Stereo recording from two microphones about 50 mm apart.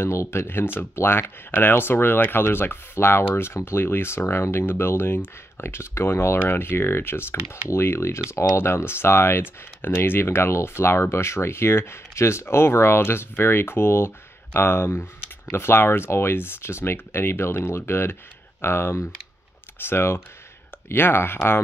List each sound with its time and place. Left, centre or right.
0.0 s speech: left
0.9 s speech: left